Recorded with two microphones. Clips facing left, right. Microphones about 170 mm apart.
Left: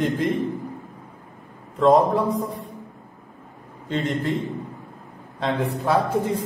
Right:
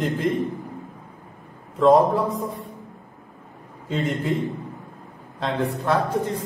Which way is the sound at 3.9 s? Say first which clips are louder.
Even; centre (ahead or behind).